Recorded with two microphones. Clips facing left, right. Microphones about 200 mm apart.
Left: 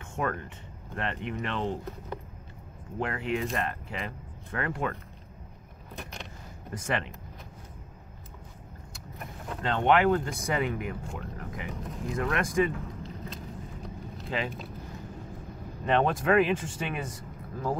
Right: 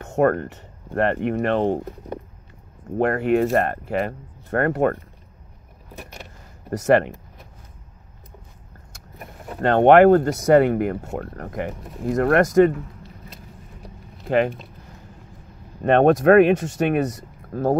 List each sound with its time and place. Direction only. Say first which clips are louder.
0.0 s speech: right 13 dB; 45° right (ahead or behind)
3.0 s speech: right 12 dB; 55° right (ahead or behind)
9.6 s speech: right 12 dB; 60° right (ahead or behind)
14.3 s speech: right 13 dB; 60° right (ahead or behind)
15.8 s speech: right 11 dB; 60° right (ahead or behind)